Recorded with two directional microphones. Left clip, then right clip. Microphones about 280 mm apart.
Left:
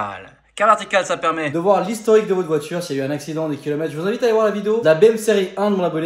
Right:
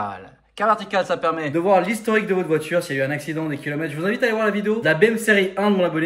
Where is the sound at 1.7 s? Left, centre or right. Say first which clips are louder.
Left 3 dB; centre.